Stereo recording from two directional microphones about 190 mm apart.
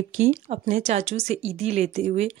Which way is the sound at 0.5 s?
35° right (ahead or behind).